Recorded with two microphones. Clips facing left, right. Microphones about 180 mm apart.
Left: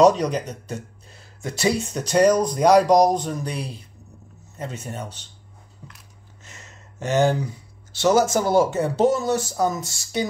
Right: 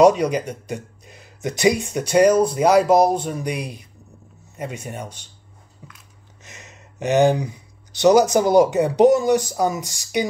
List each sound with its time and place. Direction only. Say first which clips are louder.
0.0 s speech: right 2 dB; 10° right (ahead or behind)
6.4 s speech: right 3 dB; 20° right (ahead or behind)